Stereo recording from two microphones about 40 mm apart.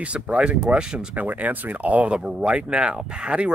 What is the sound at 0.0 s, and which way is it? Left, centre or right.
Speech, right.